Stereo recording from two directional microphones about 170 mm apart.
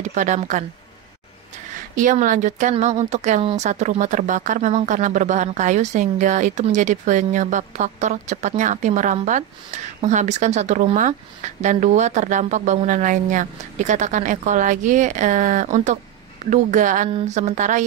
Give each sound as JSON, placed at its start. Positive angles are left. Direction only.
{"t": 0.0, "sound": "speech", "side_deg": -45}
{"t": 2.0, "sound": "speech", "side_deg": -50}